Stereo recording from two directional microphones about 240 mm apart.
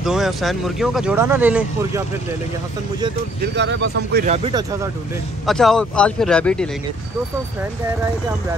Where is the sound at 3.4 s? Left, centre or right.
Right.